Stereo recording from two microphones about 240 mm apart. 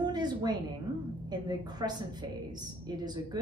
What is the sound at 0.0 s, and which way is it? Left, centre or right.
Music, centre.